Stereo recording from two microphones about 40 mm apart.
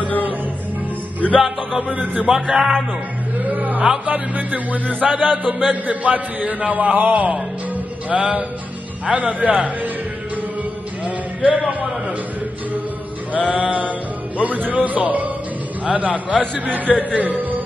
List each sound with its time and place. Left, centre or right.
1.2 s music: left
1.9 s a man's voice: right
2.4 s music: centre
3.3 s a sound: right
4.0 s music: right
5.1 s music: centre
5.7 s a man's voice: right
11.1 s music: right
13.5 s a man's voice: right
16.5 s music: right